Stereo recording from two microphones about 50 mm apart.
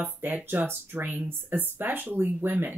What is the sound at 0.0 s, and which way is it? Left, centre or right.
Speech, right.